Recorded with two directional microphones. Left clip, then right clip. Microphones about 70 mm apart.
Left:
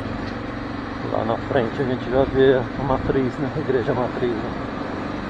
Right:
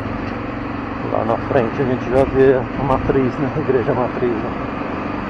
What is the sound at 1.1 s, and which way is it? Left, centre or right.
Speech, left.